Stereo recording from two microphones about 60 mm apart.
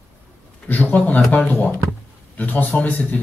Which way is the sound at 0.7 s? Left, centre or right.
Left.